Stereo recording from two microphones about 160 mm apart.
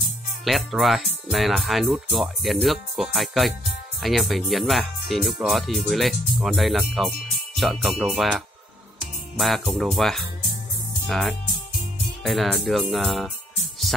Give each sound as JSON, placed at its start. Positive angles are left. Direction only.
{"t": 0.5, "sound": "speech", "side_deg": 0}